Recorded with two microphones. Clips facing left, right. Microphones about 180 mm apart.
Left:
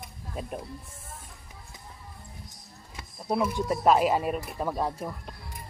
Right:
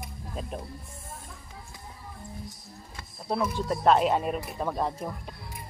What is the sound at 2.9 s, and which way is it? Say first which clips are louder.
Speech: left 2 dB; 10° left (ahead or behind).